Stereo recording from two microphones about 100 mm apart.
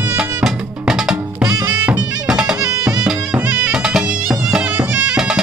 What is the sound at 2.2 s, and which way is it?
Bagpipes, 5° right (ahead or behind).